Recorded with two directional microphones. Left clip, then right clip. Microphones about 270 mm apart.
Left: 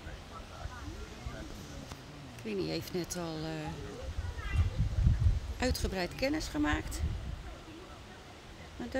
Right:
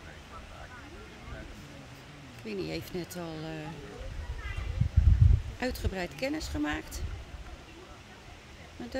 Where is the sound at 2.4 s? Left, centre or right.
Centre.